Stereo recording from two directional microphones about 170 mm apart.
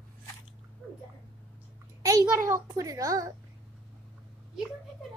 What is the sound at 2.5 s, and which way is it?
Speech, 20° right (ahead or behind).